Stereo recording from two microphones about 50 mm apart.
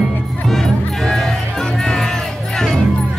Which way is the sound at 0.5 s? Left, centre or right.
Centre.